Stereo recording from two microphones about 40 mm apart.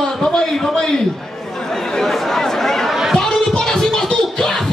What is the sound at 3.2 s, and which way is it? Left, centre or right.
Music, centre.